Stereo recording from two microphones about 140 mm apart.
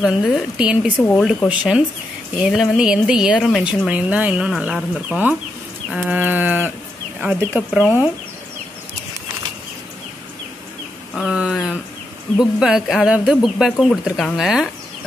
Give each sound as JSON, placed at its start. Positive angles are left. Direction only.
{"t": 0.1, "sound": "livestock", "side_deg": -5}
{"t": 0.9, "sound": "speech", "side_deg": 10}
{"t": 1.5, "sound": "livestock", "side_deg": -10}
{"t": 2.5, "sound": "a woman's voice", "side_deg": 0}
{"t": 5.9, "sound": "livestock", "side_deg": -10}
{"t": 11.2, "sound": "livestock", "side_deg": -5}
{"t": 11.5, "sound": "a sound", "side_deg": 5}
{"t": 12.4, "sound": "a woman's voice", "side_deg": -5}